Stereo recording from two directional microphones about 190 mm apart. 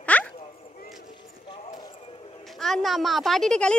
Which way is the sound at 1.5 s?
25° left (ahead or behind).